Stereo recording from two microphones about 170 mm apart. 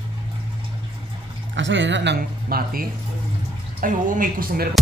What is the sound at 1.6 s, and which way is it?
Speech, 90° right.